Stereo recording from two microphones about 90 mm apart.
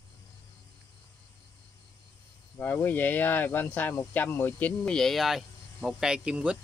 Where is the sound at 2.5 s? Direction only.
25° left (ahead or behind).